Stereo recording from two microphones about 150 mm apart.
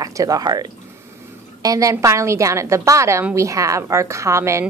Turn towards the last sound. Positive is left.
turn(degrees=-20)  # may be behind; listen again after turning